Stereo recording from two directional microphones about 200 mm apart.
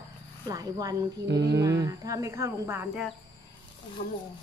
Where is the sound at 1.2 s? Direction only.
60° right (ahead or behind).